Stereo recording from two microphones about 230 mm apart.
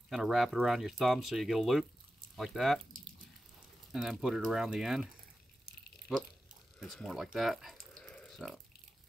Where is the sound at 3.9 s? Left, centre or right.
Centre.